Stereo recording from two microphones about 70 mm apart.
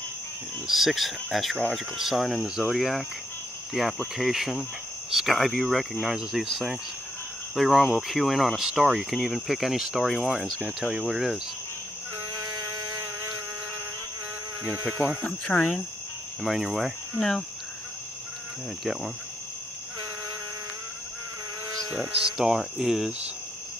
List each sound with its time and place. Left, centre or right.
0.7 s speech: centre
7.5 s speech: centre
15.0 s speech: centre
15.4 s speech: centre
16.4 s speech: centre
22.2 s speech: centre